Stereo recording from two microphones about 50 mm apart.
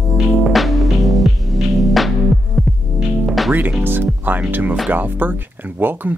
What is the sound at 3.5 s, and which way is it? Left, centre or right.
Music, right.